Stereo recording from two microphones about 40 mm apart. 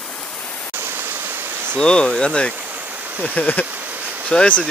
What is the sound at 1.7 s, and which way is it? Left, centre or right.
Speech, left.